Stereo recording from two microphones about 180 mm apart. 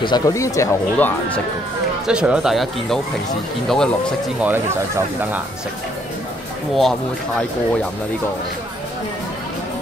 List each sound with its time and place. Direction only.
0.0 s speech: 20° left (ahead or behind)
2.0 s speech: 5° right (ahead or behind)
4.4 s speech: 10° right (ahead or behind)